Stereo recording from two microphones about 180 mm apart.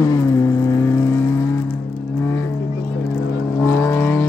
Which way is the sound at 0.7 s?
15° left (ahead or behind).